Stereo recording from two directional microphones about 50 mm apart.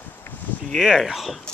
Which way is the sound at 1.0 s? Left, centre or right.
Centre.